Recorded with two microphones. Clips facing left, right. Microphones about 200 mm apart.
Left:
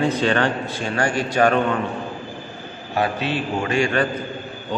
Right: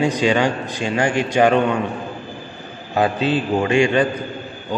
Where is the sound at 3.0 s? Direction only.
20° right (ahead or behind).